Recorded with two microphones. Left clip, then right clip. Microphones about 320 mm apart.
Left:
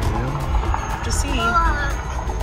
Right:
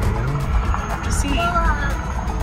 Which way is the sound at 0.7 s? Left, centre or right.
Left.